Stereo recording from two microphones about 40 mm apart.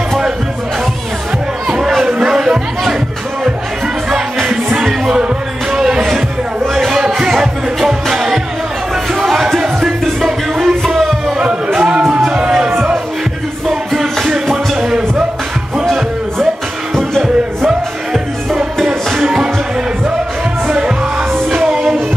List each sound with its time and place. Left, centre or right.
2.0 s music: centre
4.4 s music: centre
5.1 s music: right; by 11.3 s centre
11.3 s music: centre
12.4 s music: centre
14.8 s music: centre
17.6 s music: centre
21.6 s music: centre